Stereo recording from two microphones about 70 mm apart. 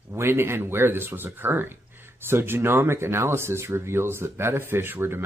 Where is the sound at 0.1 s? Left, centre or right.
Right.